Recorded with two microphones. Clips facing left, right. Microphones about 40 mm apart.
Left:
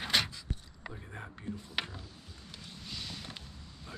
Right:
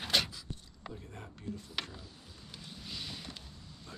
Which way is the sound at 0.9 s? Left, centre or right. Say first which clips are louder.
Left 2 dB; left.